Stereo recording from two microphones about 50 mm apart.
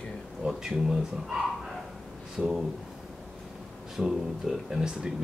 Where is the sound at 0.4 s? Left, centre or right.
Centre.